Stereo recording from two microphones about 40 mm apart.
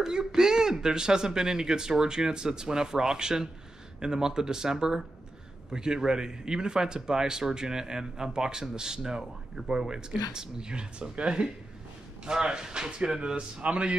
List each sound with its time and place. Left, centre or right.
0.0 s speech: centre
13.6 s a man's voice: right